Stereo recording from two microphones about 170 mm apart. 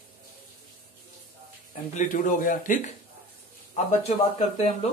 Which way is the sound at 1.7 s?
50° left (ahead or behind).